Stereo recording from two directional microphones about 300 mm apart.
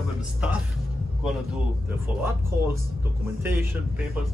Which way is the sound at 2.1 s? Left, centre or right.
Centre.